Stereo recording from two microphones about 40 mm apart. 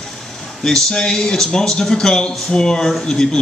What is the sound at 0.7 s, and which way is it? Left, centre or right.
Speech, centre.